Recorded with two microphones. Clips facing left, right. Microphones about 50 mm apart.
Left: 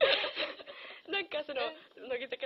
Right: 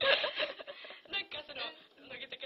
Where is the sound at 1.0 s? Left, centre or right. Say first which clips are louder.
Left 7 dB; centre.